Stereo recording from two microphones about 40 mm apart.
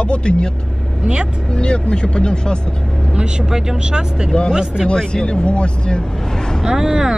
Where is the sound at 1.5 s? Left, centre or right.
Left.